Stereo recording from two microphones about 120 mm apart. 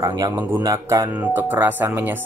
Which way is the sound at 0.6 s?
30° right (ahead or behind).